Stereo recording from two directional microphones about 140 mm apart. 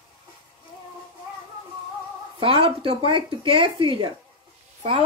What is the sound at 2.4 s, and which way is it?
A woman's voice, 40° right (ahead or behind).